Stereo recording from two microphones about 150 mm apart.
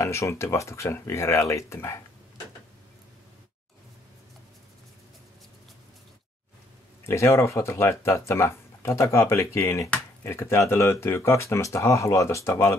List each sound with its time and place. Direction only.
0.0 s speech: 20° left (ahead or behind)
7.1 s speech: 20° left (ahead or behind)